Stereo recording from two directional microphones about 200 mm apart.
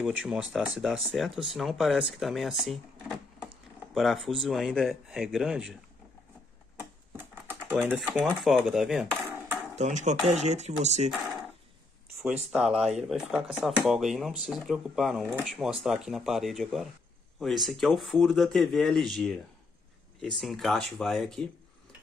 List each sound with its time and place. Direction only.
0.0 s speech: 5° right (ahead or behind)
7.2 s typing: 10° right (ahead or behind)
8.2 s speech: 5° left (ahead or behind)
9.8 s speech: 35° right (ahead or behind)
12.4 s speech: centre (ahead or behind)